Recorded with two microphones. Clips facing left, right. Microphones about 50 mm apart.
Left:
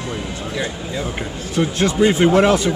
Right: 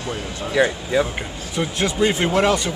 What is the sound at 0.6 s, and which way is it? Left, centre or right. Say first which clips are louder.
Speech: right 9 dB; right.